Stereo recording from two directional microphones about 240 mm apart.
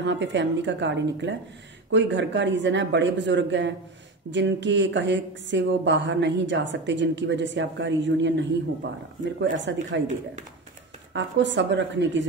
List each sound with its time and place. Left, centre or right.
0.0 s speech: right
11.1 s speech: right